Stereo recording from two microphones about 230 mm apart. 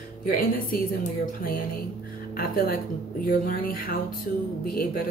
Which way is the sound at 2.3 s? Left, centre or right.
Left.